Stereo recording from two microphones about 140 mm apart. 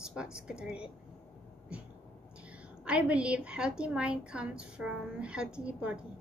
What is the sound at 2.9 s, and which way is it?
A woman's voice, 10° right (ahead or behind).